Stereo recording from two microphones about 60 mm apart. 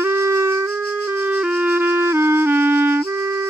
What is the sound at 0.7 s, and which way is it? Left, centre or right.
Music, right.